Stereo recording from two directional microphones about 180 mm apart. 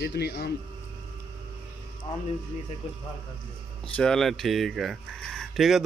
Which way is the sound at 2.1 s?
35° left (ahead or behind).